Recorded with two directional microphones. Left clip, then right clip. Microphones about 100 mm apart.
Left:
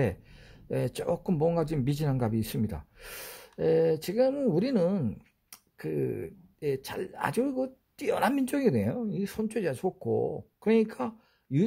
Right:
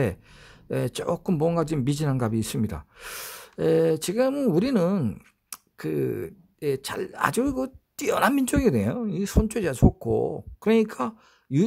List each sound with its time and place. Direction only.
0.0 s speech: 30° right (ahead or behind)